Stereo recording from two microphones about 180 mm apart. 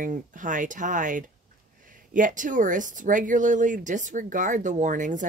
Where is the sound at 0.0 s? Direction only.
45° right (ahead or behind).